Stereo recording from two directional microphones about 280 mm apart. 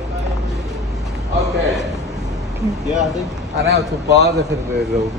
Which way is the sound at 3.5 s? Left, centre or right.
Right.